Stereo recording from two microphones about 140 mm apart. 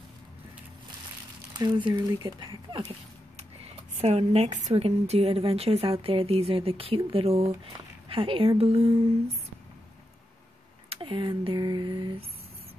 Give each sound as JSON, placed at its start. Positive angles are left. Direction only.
{"t": 1.6, "sound": "speech", "side_deg": -35}
{"t": 3.3, "sound": "speech", "side_deg": -50}
{"t": 10.9, "sound": "speech", "side_deg": -35}